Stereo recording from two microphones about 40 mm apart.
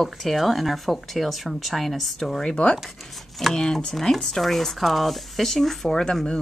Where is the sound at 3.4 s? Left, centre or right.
Centre.